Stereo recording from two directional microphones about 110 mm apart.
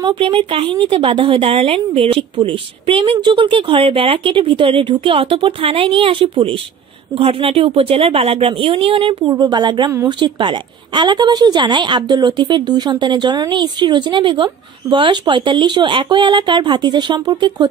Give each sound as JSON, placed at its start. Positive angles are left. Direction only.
{"t": 0.0, "sound": "a woman's voice", "side_deg": -50}
{"t": 9.2, "sound": "a woman's voice", "side_deg": -40}